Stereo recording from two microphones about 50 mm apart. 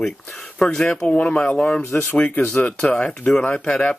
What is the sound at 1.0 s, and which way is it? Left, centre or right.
Speech, left.